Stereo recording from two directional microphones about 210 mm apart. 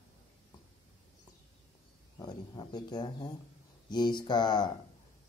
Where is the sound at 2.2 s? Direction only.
20° left (ahead or behind).